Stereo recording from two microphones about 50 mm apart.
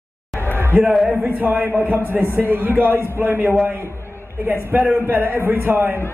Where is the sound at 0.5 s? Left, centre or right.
Right.